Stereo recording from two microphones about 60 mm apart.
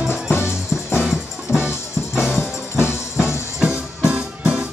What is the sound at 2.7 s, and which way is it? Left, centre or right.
Music, left.